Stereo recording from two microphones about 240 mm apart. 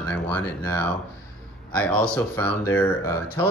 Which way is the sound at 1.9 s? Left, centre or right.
Centre.